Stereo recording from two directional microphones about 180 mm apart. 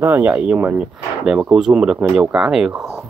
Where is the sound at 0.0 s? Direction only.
10° right (ahead or behind).